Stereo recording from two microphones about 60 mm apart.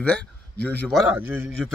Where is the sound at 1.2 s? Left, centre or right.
Right.